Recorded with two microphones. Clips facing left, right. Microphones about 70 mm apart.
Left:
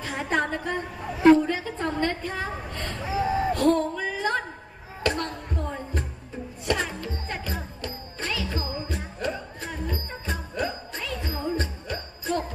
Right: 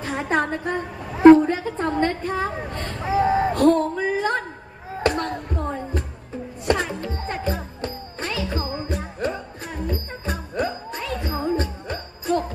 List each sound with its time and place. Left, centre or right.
0.0 s a woman's voice: right
5.0 s a sound: right
6.6 s music: right
10.5 s music: right